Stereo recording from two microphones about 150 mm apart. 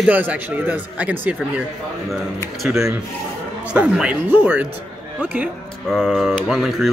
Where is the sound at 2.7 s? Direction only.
20° right (ahead or behind).